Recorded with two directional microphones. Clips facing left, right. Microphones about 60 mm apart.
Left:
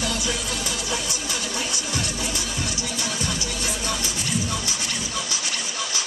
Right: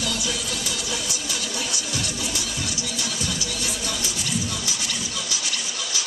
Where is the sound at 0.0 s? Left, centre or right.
Left.